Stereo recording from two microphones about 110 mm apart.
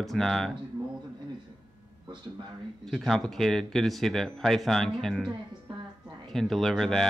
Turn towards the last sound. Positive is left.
turn(degrees=0)  # may be behind; listen again after turning